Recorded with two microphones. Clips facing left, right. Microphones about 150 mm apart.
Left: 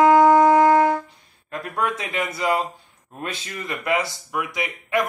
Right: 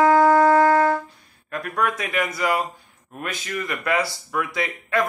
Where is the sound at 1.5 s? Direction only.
25° left (ahead or behind).